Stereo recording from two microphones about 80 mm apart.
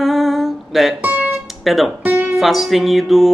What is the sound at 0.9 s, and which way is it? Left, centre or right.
Music, right.